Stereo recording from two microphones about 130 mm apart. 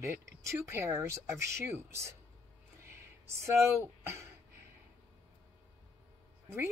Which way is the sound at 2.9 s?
20° right (ahead or behind).